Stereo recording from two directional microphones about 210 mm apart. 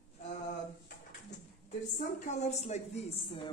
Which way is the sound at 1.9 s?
35° left (ahead or behind).